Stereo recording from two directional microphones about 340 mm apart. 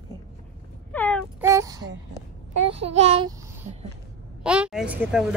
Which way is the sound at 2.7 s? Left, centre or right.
Centre.